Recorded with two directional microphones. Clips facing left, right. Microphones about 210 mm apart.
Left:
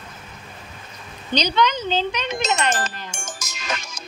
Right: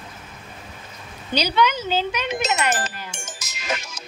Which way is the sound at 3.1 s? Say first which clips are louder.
Left 3 dB; 45° left (ahead or behind).